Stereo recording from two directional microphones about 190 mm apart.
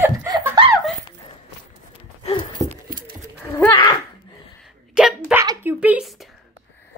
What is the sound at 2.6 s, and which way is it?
Patter, 45° right (ahead or behind).